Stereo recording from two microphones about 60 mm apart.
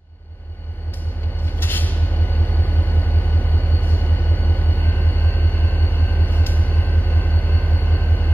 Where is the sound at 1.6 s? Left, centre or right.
Left.